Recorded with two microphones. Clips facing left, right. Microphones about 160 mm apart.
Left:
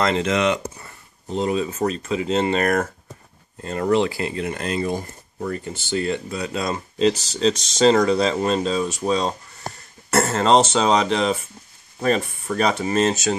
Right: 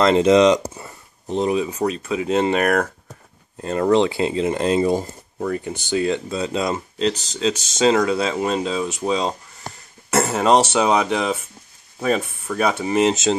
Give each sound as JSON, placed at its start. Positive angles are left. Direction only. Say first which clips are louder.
{"t": 0.3, "sound": "speech", "louder": "right 7 dB", "side_deg": -20}
{"t": 3.9, "sound": "speech", "louder": "right 2 dB", "side_deg": -25}
{"t": 5.5, "sound": "speech", "louder": "right 3 dB", "side_deg": -15}
{"t": 7.0, "sound": "speech", "louder": "left 5 dB", "side_deg": 0}